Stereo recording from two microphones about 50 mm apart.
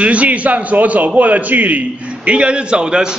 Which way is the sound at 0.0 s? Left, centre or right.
Right.